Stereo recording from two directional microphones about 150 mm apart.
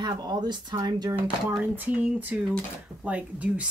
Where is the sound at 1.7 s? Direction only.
10° right (ahead or behind).